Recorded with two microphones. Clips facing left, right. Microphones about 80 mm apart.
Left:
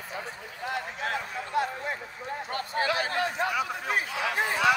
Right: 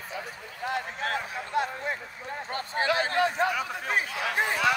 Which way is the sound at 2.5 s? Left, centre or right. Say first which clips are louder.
Right 1 dB; right.